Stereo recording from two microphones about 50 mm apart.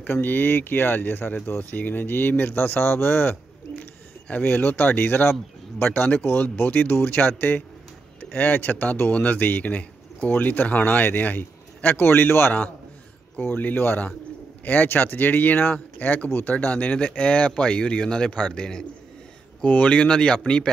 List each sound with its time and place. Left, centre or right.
0.1 s a man's voice: left
4.3 s a man's voice: left
13.6 s a man's voice: left; by 18.9 s centre
19.6 s speech: left